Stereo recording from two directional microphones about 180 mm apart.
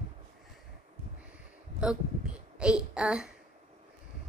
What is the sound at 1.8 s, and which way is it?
A child's voice, 5° right (ahead or behind).